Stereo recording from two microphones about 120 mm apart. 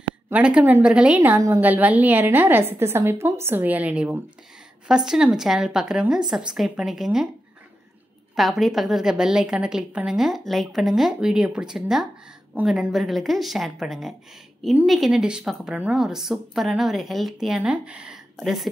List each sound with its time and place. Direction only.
0.3 s a woman's voice: 10° right (ahead or behind)
8.4 s a woman's voice: centre (ahead or behind)